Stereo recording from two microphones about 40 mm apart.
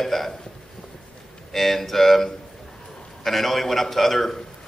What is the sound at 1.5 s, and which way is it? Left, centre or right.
A man's voice, centre.